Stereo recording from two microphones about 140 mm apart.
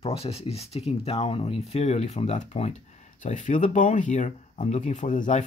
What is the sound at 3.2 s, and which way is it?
Speech, 65° left (ahead or behind).